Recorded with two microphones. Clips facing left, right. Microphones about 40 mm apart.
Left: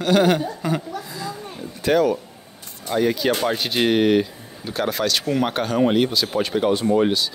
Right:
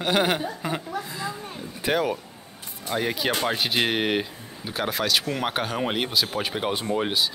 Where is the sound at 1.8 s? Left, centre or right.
Centre.